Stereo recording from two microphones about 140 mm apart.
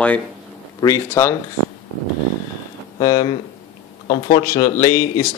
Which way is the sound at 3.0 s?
30° left (ahead or behind).